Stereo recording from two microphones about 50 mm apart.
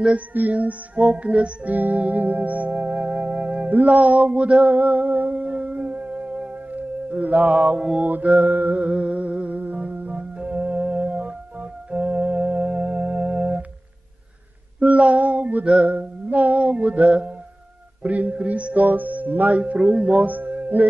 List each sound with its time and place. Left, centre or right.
0.3 s music: right
3.7 s a sound: right
6.7 s mantra: right
8.1 s music: right
10.4 s organ: right
14.8 s music: right
18.0 s a sound: right
19.6 s speech: right